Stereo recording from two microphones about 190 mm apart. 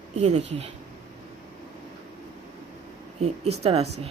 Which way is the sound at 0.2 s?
35° right (ahead or behind).